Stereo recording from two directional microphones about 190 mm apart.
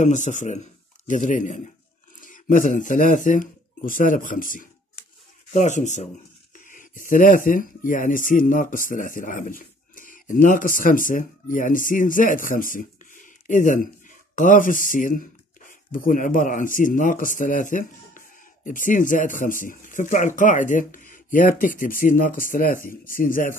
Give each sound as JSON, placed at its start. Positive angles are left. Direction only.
{"t": 0.0, "sound": "a man's voice", "side_deg": 40}